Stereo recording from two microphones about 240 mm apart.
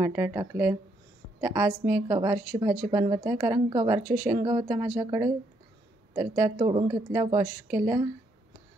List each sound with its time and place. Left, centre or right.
0.0 s speech: centre
4.0 s speech: right
4.3 s speech: centre